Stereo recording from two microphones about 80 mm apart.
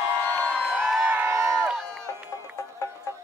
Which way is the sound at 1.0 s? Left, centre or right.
Right.